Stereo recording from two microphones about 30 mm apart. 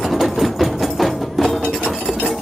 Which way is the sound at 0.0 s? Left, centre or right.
Centre.